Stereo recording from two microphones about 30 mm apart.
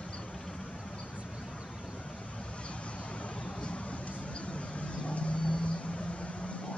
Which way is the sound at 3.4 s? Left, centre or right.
Left.